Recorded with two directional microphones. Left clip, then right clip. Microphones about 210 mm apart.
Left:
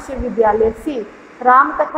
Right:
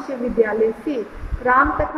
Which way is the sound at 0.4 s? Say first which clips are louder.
Left 5 dB; 15° left (ahead or behind).